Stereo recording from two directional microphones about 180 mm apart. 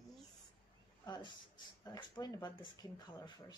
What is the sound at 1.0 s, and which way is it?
Speech, 25° left (ahead or behind).